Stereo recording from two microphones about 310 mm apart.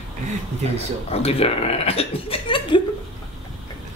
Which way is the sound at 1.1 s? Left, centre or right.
Centre.